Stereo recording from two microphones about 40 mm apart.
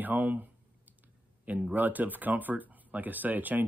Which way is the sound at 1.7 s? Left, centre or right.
Right.